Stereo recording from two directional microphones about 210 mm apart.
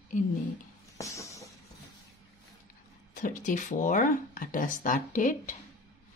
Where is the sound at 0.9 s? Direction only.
15° left (ahead or behind).